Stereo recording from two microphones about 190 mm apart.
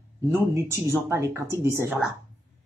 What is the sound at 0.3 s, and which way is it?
Speech, 15° right (ahead or behind).